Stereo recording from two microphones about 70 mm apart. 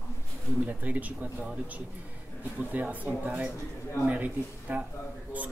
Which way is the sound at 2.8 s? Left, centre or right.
Right.